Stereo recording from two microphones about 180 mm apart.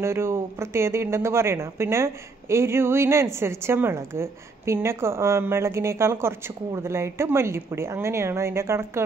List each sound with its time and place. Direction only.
0.0 s speech: 15° right (ahead or behind)